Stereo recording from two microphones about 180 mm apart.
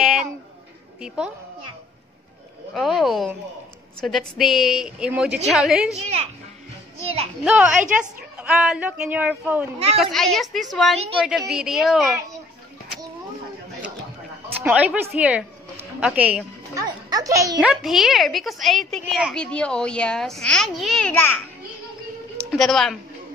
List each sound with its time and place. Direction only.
1.0 s a woman's voice: 5° right (ahead or behind)
2.7 s a woman's voice: centre (ahead or behind)
7.0 s a child's voice: 35° right (ahead or behind)
7.4 s a woman's voice: 5° right (ahead or behind)
14.6 s a woman's voice: 5° right (ahead or behind)
17.1 s a child's voice: 20° right (ahead or behind)
17.6 s a woman's voice: centre (ahead or behind)
22.5 s speech: centre (ahead or behind)